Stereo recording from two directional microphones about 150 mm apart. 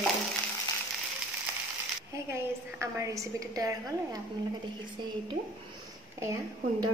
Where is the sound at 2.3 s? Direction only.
20° right (ahead or behind).